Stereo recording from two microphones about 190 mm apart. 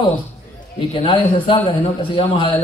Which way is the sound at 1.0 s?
25° left (ahead or behind).